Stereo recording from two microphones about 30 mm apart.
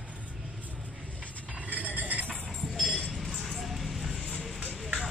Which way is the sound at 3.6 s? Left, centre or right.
Centre.